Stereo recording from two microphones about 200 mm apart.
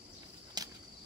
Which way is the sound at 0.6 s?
20° right (ahead or behind).